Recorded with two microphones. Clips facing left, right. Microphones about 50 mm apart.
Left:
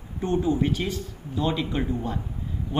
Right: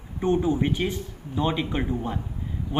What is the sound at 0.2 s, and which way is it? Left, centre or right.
Speech, right.